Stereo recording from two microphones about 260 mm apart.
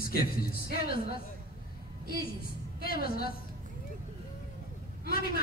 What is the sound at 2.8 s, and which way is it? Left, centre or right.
Speech, left.